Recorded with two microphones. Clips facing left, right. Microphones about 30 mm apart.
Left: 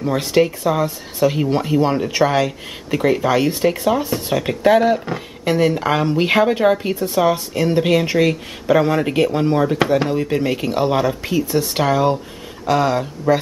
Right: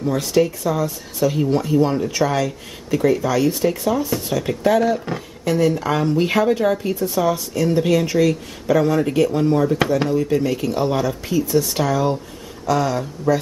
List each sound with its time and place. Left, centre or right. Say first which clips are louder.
0.0 s speech: left 2 dB; left